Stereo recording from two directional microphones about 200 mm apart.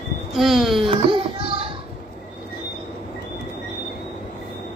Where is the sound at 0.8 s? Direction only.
25° right (ahead or behind).